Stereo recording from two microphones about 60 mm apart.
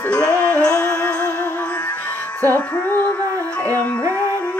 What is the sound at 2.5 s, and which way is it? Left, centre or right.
Music, left.